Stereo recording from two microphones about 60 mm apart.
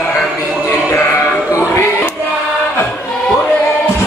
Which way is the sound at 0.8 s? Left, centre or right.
Left.